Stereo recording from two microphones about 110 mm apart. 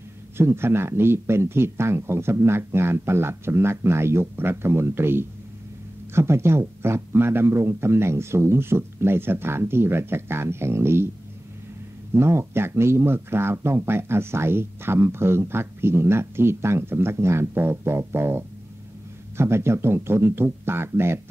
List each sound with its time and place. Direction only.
0.4 s speech: 20° right (ahead or behind)
12.1 s speech: 25° right (ahead or behind)